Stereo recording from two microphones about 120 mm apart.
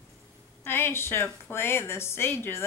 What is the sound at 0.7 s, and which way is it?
A woman's voice, 20° left (ahead or behind).